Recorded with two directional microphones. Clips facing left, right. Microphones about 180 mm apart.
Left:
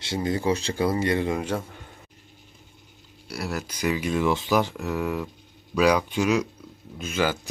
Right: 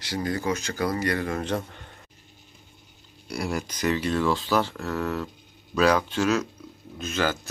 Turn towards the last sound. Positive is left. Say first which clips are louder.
# left 1 dB
turn(degrees=10)  # may be behind; listen again after turning